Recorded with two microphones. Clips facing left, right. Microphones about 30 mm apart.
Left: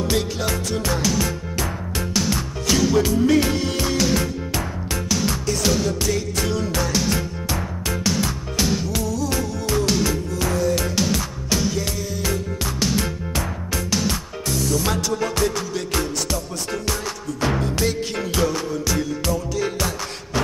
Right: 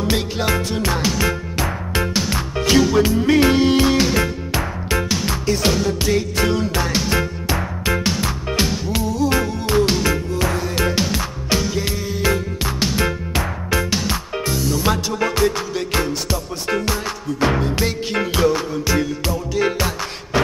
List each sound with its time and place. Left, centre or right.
0.1 s music: right